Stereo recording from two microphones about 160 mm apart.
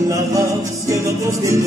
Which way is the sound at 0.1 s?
20° right (ahead or behind).